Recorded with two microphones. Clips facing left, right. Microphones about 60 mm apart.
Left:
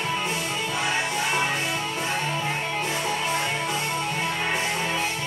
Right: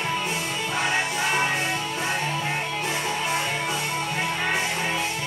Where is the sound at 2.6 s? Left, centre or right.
Left.